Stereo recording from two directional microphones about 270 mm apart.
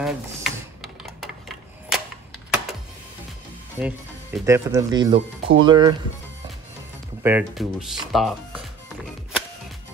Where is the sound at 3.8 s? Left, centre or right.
Centre.